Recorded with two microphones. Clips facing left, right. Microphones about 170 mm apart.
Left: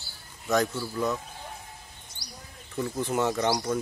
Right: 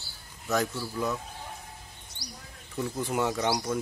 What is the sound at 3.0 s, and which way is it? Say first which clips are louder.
Speech: left 2 dB; 10° right (ahead or behind).